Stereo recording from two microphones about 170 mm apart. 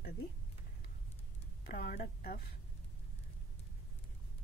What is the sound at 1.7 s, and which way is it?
Speech, 70° left (ahead or behind).